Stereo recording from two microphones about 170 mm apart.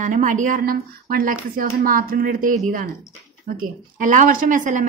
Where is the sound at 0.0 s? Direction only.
50° right (ahead or behind).